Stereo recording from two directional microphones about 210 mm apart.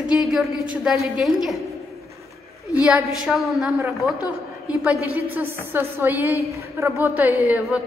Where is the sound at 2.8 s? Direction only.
5° right (ahead or behind).